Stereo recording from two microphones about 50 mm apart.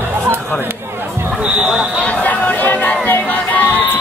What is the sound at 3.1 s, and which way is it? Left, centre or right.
Run, left.